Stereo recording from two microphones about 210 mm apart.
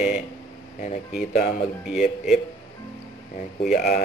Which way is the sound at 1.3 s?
40° left (ahead or behind).